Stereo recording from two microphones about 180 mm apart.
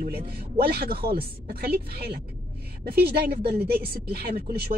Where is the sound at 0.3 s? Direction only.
60° right (ahead or behind).